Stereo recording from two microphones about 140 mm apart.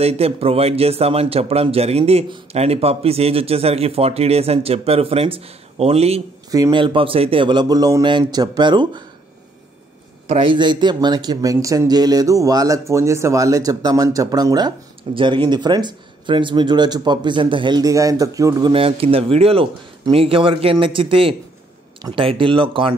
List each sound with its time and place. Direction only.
0.0 s a man's voice: 45° right (ahead or behind)
6.5 s speech: 25° right (ahead or behind)
6.8 s speech: 40° right (ahead or behind)
10.3 s speech: 35° right (ahead or behind)
18.7 s a man's voice: 40° right (ahead or behind)